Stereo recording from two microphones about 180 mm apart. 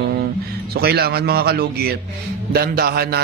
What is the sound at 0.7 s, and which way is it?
A man's voice, 60° right (ahead or behind).